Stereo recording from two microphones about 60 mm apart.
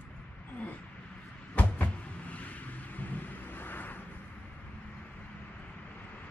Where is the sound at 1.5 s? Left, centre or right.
Left.